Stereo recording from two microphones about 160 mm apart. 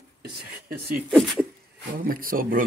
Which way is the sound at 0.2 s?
75° right (ahead or behind).